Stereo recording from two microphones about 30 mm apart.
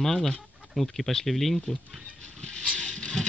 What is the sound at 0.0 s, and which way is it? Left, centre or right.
Speech, centre.